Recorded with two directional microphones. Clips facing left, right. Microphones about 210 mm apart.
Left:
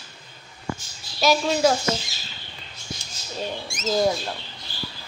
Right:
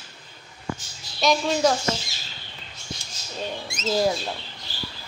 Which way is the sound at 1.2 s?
Centre (ahead or behind).